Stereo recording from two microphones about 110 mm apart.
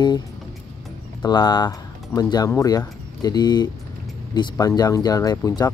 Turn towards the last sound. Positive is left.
turn(degrees=30)  # may be behind; listen again after turning